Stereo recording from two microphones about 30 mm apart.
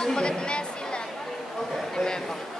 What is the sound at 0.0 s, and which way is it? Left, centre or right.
Music, left.